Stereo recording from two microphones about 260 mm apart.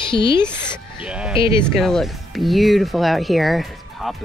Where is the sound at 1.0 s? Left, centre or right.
Centre.